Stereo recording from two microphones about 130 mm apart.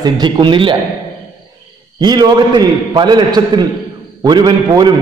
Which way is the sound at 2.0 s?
35° right (ahead or behind).